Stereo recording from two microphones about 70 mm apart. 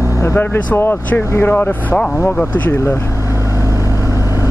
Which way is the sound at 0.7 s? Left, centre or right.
Left.